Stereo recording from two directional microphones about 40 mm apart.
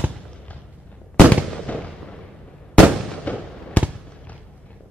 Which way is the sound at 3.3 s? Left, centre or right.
Left.